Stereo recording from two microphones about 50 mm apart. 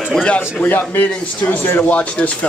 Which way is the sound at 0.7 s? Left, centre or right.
Left.